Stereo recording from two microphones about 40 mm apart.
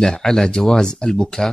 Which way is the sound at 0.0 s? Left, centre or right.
Centre.